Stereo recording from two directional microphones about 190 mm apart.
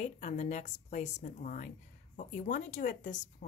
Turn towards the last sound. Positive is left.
turn(degrees=40)  # may be behind; listen again after turning